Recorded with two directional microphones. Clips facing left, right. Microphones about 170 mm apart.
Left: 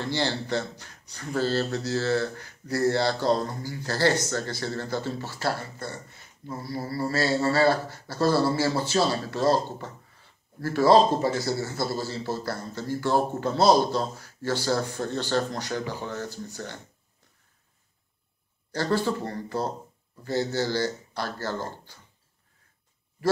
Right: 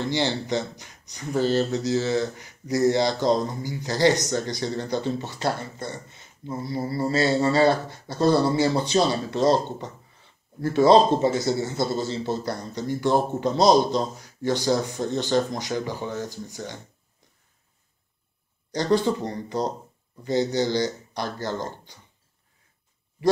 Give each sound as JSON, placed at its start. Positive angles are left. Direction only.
{"t": 0.0, "sound": "a man's voice", "side_deg": -15}
{"t": 18.7, "sound": "a man's voice", "side_deg": -15}